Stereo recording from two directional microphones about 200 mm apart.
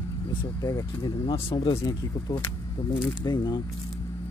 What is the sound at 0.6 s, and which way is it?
Speech, 20° left (ahead or behind).